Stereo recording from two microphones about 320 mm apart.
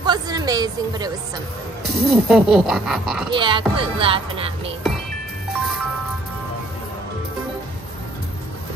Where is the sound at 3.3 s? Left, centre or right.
Centre.